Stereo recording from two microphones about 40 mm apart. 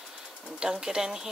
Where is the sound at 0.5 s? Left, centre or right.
Centre.